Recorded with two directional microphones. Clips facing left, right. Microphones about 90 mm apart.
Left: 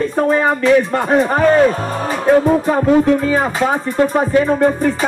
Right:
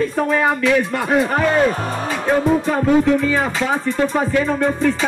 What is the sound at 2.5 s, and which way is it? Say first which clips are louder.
Music: left 3 dB; 25° left (ahead or behind).